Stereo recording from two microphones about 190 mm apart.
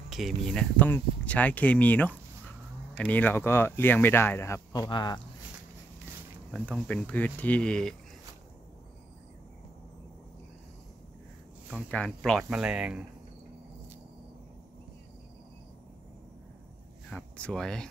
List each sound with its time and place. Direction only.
0.1 s speech: centre (ahead or behind); by 5.2 s 20° left (ahead or behind)
6.5 s speech: 5° left (ahead or behind)
11.7 s speech: 5° left (ahead or behind)
17.1 s speech: 5° left (ahead or behind)